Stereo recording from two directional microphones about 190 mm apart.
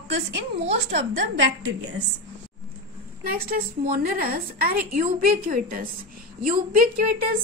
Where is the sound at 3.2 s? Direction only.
50° right (ahead or behind).